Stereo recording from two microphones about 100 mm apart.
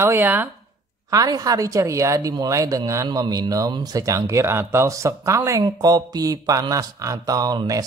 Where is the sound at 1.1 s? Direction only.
40° right (ahead or behind).